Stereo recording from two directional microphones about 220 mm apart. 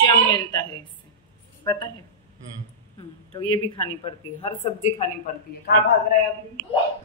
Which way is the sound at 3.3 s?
25° left (ahead or behind).